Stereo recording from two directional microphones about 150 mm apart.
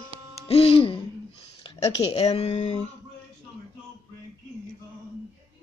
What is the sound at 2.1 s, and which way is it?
Speech, 45° left (ahead or behind).